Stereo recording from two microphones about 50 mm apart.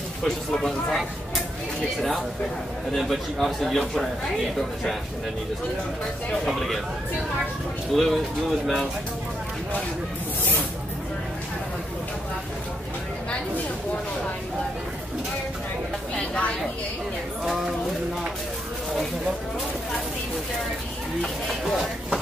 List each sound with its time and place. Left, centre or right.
0.2 s speech: centre
2.0 s a man's voice: centre
6.4 s a man's voice: centre
7.9 s a man's voice: centre
16.2 s a sound: left